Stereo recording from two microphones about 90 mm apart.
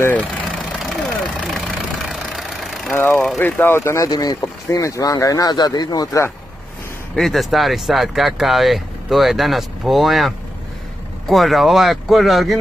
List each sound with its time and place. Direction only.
0.7 s vehicle: 5° left (ahead or behind)
2.9 s speech: 25° left (ahead or behind)
4.1 s speech: 45° left (ahead or behind)
7.2 s speech: centre (ahead or behind)